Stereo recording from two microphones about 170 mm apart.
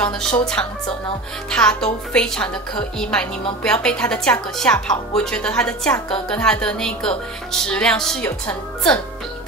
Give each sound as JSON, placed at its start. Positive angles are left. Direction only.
{"t": 0.0, "sound": "a woman's voice", "side_deg": 5}